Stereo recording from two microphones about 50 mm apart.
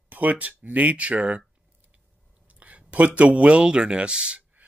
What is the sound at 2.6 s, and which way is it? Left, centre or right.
Speech, right.